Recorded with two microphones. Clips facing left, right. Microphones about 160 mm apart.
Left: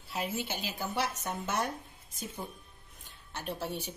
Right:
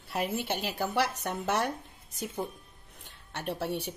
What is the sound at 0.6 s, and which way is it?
Speech, 70° right (ahead or behind).